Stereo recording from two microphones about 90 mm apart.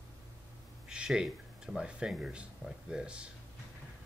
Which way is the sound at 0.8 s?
10° right (ahead or behind).